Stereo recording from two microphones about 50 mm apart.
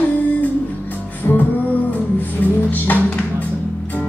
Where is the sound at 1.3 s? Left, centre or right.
Left.